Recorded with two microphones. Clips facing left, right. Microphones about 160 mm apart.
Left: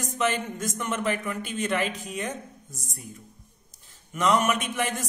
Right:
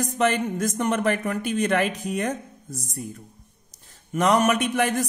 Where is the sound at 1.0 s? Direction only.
45° right (ahead or behind).